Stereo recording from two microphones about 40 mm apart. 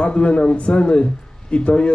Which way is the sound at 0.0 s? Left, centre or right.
Left.